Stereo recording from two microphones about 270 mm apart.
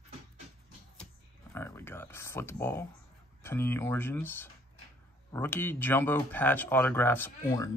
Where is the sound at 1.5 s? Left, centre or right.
Centre.